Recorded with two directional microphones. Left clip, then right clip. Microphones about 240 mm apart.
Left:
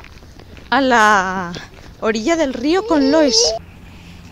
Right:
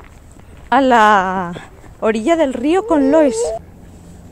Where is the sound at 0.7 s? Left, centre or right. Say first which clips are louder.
Right 2 dB; right.